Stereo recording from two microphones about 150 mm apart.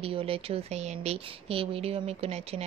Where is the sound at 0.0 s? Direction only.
40° right (ahead or behind).